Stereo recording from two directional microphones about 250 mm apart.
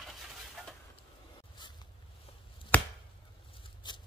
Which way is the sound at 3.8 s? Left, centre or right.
Centre.